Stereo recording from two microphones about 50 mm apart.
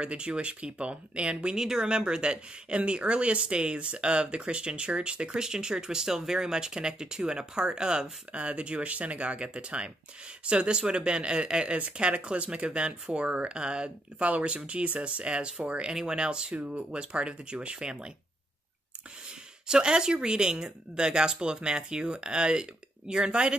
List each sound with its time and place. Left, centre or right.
0.0 s speech: right
15.9 s speech: centre
19.7 s speech: centre